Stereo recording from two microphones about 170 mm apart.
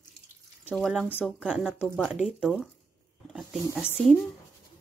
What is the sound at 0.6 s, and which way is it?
Speech, centre (ahead or behind).